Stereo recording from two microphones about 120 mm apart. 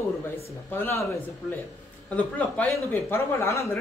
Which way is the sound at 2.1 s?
15° left (ahead or behind).